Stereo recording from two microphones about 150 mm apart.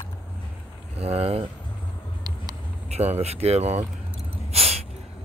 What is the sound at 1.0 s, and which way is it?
Speech, 40° right (ahead or behind).